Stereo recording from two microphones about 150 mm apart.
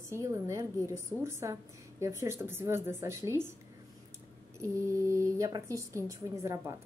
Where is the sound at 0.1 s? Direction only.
20° right (ahead or behind).